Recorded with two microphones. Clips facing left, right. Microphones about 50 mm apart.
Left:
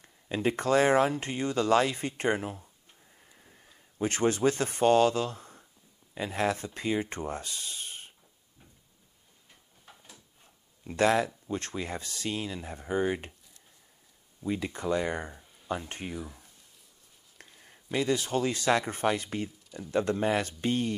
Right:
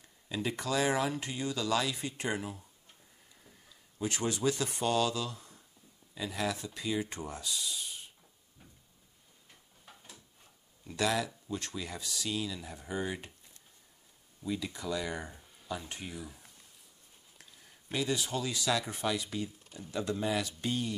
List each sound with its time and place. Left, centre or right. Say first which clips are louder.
0.0 s speech: left 6 dB; left
9.5 s a sound: left 1 dB; centre
10.8 s speech: left 7 dB; left
14.4 s speech: left 5 dB; left
15.3 s a sound: left 2 dB; centre
15.7 s speech: left 5 dB; left
16.2 s speech: left 5 dB; left
17.4 s a sound: left 5 dB; left
17.9 s speech: left 5 dB; left